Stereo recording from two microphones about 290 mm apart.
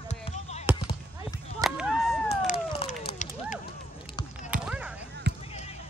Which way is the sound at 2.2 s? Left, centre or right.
Left.